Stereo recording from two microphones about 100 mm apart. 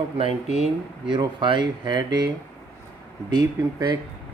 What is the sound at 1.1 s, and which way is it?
Speech, 50° right (ahead or behind).